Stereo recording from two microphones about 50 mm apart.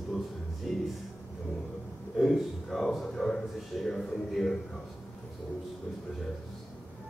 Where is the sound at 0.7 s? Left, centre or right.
Centre.